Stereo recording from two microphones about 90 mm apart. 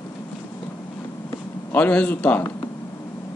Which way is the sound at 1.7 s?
20° left (ahead or behind).